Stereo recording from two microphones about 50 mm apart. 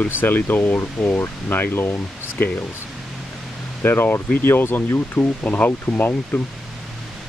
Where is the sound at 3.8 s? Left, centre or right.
Left.